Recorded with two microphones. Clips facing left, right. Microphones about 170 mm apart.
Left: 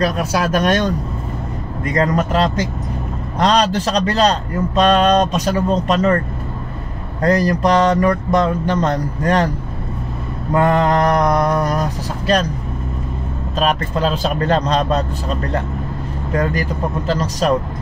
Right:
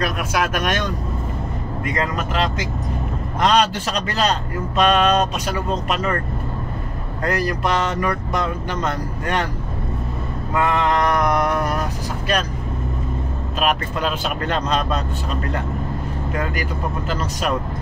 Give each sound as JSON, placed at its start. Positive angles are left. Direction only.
{"t": 0.0, "sound": "a man's voice", "side_deg": 35}
{"t": 2.0, "sound": "a man's voice", "side_deg": 40}
{"t": 7.2, "sound": "a man's voice", "side_deg": 35}
{"t": 10.5, "sound": "a man's voice", "side_deg": 35}
{"t": 13.6, "sound": "a man's voice", "side_deg": 35}
{"t": 17.1, "sound": "a man's voice", "side_deg": 35}